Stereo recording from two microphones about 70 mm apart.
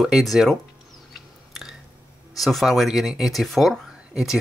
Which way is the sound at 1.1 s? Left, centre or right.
Centre.